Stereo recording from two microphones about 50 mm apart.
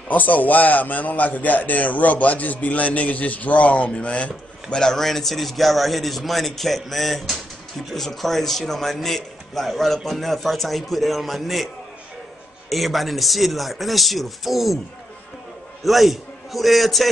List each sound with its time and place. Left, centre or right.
0.1 s a man's voice: left
4.8 s speech: centre
15.8 s a man's voice: centre